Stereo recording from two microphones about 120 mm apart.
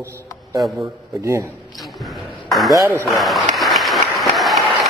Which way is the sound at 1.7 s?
Centre (ahead or behind).